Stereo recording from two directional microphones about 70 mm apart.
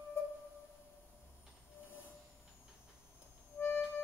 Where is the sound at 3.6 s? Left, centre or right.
Left.